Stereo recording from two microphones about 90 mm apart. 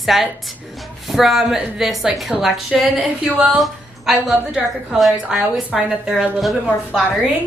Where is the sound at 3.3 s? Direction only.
20° right (ahead or behind).